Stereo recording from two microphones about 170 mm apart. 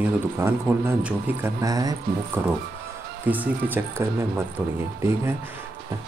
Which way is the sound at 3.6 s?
10° right (ahead or behind).